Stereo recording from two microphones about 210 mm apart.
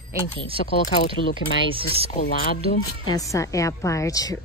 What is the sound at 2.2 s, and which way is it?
Speech, 45° left (ahead or behind).